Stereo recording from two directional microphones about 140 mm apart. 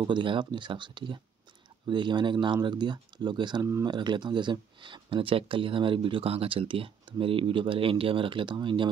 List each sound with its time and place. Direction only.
0.0 s speech: 35° right (ahead or behind)